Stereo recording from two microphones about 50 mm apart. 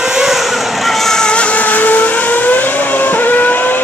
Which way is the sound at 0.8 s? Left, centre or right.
Centre.